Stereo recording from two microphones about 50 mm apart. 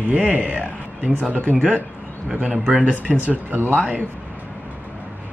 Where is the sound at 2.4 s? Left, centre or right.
Centre; by 3.7 s right.